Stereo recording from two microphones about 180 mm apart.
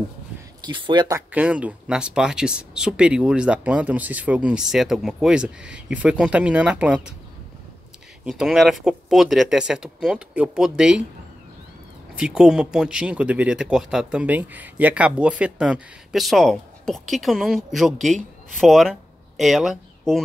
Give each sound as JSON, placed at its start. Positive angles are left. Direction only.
{"t": 0.7, "sound": "speech", "side_deg": -25}
{"t": 1.3, "sound": "speech", "side_deg": -5}
{"t": 8.3, "sound": "speech", "side_deg": -5}
{"t": 12.2, "sound": "speech", "side_deg": -5}